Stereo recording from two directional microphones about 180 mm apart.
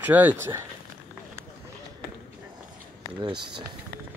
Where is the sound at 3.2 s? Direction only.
25° right (ahead or behind).